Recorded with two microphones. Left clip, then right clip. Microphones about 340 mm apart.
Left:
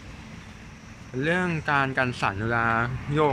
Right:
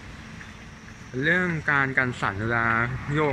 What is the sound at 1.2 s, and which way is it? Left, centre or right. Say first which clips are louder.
Speech: right 2 dB; centre.